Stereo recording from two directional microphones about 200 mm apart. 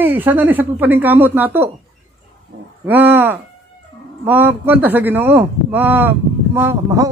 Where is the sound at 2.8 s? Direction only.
10° right (ahead or behind).